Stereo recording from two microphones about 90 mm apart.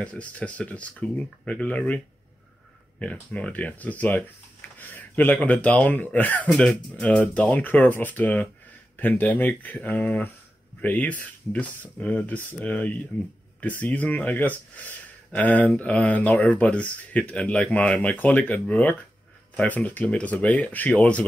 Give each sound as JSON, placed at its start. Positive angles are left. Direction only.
{"t": 0.0, "sound": "speech", "side_deg": 15}
{"t": 3.0, "sound": "speech", "side_deg": 15}